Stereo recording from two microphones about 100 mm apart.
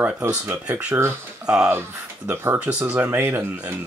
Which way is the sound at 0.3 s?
15° right (ahead or behind).